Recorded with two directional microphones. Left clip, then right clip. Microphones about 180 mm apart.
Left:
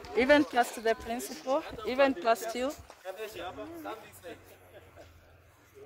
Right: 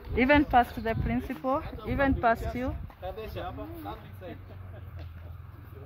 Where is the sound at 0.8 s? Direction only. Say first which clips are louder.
Left 1 dB; 75° left (ahead or behind).